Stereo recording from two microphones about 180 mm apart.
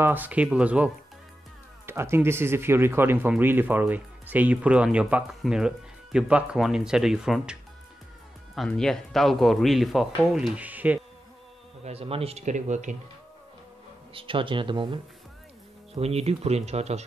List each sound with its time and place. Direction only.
0.0 s speech: 10° right (ahead or behind)
8.5 s speech: 5° left (ahead or behind)
11.8 s speech: 35° right (ahead or behind)
14.1 s speech: 30° right (ahead or behind)